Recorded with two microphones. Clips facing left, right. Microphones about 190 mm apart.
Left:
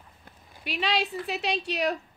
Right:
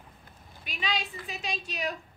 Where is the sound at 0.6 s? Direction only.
70° left (ahead or behind).